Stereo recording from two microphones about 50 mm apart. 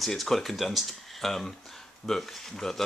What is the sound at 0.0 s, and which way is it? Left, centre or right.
Speech, centre.